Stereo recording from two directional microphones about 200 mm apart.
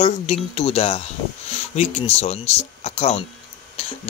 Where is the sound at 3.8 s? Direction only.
30° left (ahead or behind).